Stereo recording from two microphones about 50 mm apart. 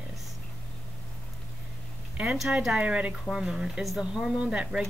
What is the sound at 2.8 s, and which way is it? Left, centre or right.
A woman's voice, right.